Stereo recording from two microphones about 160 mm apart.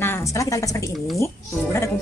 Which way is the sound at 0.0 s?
15° left (ahead or behind).